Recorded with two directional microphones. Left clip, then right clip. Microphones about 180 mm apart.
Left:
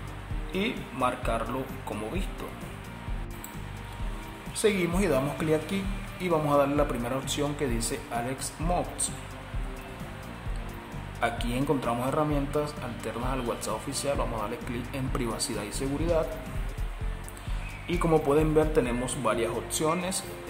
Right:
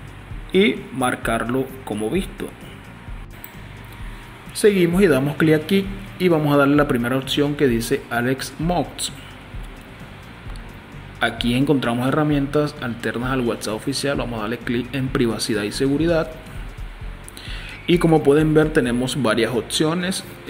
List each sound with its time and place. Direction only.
0.5 s speech: 20° right (ahead or behind)
4.6 s speech: 20° right (ahead or behind)
11.1 s speech: 20° right (ahead or behind)
17.8 s speech: 20° right (ahead or behind)